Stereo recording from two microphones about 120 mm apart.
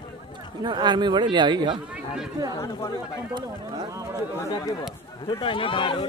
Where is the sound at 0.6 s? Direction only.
40° right (ahead or behind).